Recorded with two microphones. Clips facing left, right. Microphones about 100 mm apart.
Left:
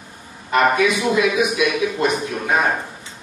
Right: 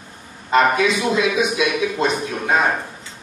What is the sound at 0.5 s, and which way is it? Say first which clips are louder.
A man's voice: even; 25° right (ahead or behind).